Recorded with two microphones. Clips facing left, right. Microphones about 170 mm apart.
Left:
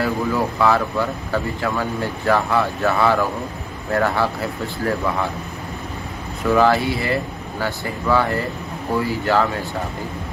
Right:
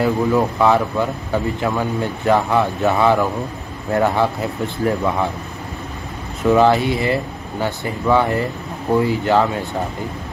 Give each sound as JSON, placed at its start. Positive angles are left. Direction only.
{"t": 0.0, "sound": "speech", "side_deg": -20}
{"t": 6.4, "sound": "speech", "side_deg": -20}